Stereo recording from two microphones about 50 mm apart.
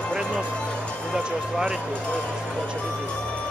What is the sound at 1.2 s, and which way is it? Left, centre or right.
Speech, centre.